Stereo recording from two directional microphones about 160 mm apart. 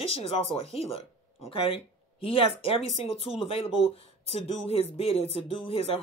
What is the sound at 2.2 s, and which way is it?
Speech, 35° left (ahead or behind).